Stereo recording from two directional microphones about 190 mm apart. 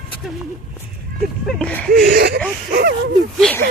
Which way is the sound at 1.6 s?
5° left (ahead or behind).